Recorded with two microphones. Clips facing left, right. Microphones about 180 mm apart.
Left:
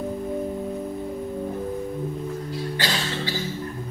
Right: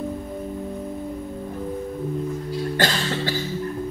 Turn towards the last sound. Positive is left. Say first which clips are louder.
# right 5 dB
turn(degrees=-50)  # may be behind; listen again after turning